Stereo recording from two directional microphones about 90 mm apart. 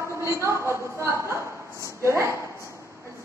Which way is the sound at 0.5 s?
30° right (ahead or behind).